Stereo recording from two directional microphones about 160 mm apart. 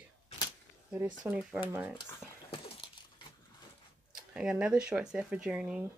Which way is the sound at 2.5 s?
35° left (ahead or behind).